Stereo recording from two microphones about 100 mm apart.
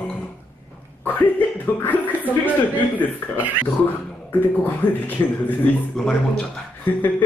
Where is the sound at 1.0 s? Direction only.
15° left (ahead or behind).